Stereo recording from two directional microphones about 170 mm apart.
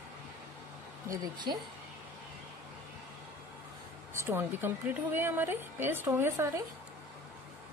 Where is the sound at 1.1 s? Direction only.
25° right (ahead or behind).